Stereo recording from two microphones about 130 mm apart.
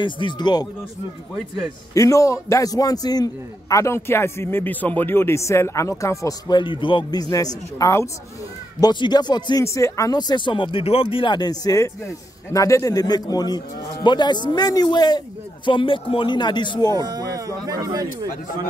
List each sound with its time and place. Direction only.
0.0 s speech: 35° left (ahead or behind)
2.0 s a man's voice: 25° left (ahead or behind)
17.0 s speech: 30° right (ahead or behind)